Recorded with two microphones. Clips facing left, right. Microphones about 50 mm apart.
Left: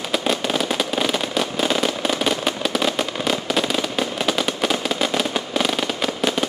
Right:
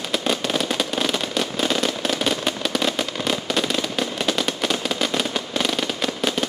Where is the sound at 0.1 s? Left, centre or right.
Centre.